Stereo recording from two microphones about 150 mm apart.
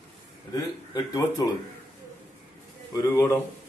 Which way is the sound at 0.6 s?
25° left (ahead or behind).